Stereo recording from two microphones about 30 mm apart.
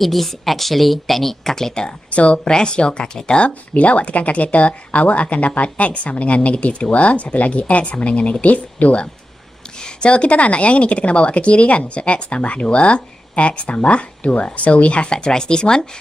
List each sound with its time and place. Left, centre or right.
0.0 s speech: centre
2.0 s speech: left
2.4 s speech: left
3.3 s speech: left
9.8 s speech: left